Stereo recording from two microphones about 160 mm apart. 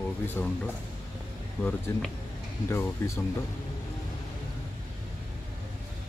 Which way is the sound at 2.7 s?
15° left (ahead or behind).